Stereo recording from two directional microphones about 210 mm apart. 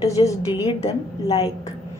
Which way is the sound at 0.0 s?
15° left (ahead or behind).